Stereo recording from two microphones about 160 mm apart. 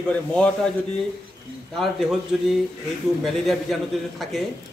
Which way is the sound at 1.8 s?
Centre (ahead or behind).